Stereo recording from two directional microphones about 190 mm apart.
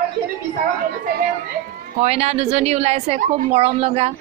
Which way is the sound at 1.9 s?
35° right (ahead or behind).